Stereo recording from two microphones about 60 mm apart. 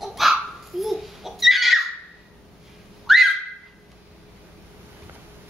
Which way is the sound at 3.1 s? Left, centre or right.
Centre.